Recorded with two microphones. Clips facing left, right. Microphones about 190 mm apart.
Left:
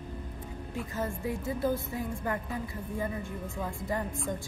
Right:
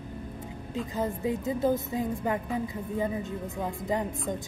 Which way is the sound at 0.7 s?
15° right (ahead or behind).